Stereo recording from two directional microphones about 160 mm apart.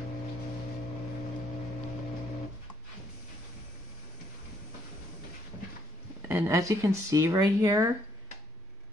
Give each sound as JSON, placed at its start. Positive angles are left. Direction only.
{"t": 6.2, "sound": "speech", "side_deg": -15}